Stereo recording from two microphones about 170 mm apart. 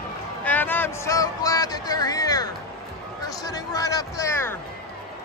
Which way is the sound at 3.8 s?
20° left (ahead or behind).